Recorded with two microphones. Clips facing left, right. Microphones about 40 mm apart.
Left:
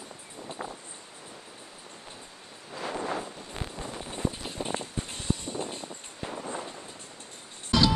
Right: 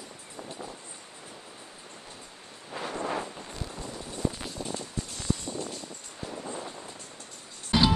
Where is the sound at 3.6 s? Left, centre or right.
Left.